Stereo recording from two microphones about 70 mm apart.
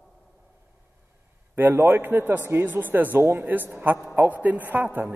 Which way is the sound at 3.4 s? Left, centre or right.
Right.